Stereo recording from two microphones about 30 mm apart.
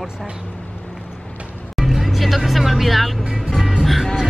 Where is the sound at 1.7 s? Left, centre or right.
Centre.